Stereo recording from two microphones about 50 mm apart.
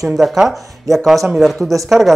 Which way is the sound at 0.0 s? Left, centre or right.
Centre.